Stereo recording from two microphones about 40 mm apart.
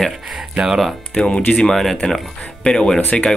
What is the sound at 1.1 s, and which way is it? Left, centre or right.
Speech, left.